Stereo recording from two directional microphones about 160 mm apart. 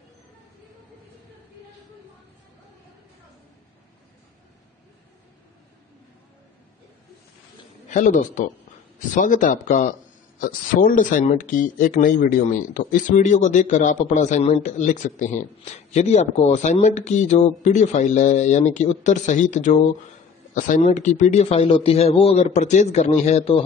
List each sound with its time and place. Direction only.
7.9 s speech: 50° left (ahead or behind)